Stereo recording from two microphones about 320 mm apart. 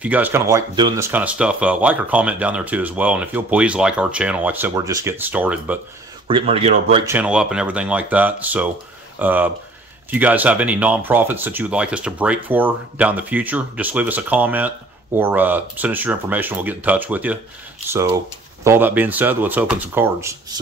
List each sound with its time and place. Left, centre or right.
0.0 s speech: centre
6.2 s speech: centre
7.2 s speech: centre